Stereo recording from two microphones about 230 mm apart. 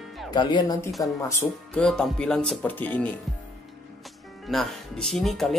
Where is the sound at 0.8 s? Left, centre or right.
Centre.